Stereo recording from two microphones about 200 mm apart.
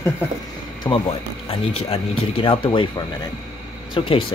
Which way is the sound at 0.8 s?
20° left (ahead or behind).